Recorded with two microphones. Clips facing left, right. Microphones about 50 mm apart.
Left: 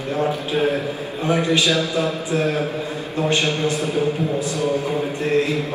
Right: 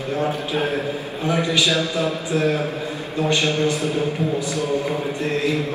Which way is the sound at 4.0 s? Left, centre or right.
Right.